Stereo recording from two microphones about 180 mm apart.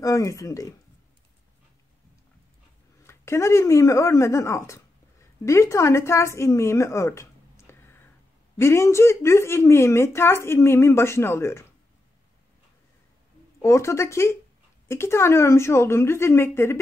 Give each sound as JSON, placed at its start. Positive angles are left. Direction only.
{"t": 0.0, "sound": "speech", "side_deg": 15}
{"t": 3.0, "sound": "a woman's voice", "side_deg": 15}
{"t": 13.6, "sound": "a woman's voice", "side_deg": 15}